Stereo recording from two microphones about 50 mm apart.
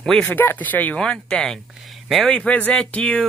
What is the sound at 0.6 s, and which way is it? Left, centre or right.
Speech, left.